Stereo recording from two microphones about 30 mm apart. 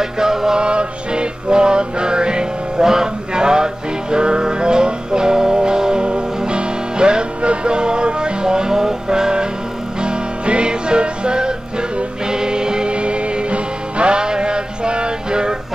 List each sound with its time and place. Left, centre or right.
0.0 s music: centre
0.6 s music: right
2.8 s music: centre
12.9 s music: right